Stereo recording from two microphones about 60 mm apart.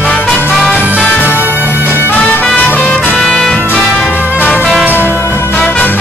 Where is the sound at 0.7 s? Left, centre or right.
Centre.